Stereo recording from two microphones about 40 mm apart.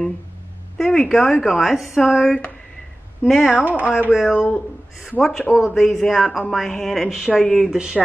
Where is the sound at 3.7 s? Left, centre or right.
Right.